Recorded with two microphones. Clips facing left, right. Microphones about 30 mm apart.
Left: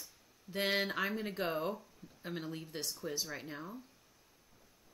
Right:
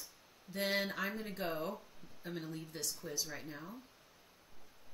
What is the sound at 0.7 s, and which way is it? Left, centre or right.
Speech, centre.